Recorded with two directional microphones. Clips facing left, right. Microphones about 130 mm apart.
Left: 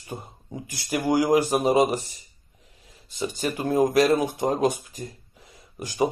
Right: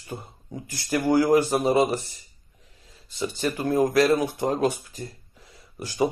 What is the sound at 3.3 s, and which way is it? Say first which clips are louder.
Speech: right 1 dB; 40° left (ahead or behind).